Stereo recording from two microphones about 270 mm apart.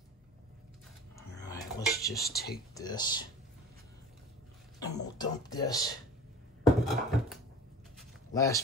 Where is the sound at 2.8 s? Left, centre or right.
Centre.